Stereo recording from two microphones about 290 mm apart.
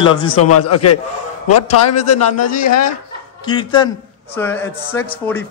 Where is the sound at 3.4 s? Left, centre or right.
Centre.